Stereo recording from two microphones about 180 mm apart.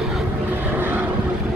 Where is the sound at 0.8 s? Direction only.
10° right (ahead or behind).